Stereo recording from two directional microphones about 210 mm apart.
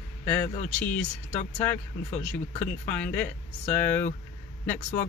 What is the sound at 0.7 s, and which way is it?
Speech, 5° left (ahead or behind).